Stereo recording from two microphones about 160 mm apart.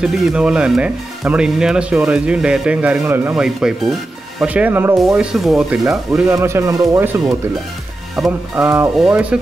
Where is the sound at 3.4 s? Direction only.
5° right (ahead or behind).